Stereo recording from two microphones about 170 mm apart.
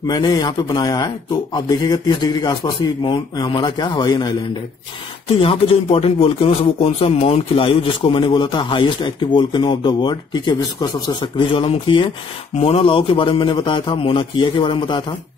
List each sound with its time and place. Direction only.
0.0 s speech: 25° left (ahead or behind)
5.4 s a man's voice: 30° left (ahead or behind)